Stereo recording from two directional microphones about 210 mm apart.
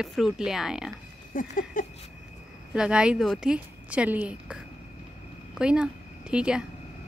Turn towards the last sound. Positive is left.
turn(degrees=-5)  # may be behind; listen again after turning